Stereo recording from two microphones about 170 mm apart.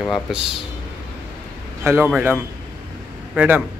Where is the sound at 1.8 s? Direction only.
15° right (ahead or behind).